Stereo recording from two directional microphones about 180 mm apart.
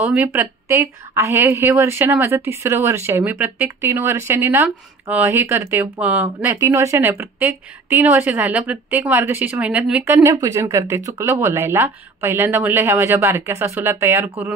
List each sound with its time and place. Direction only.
0.0 s speech: 10° right (ahead or behind)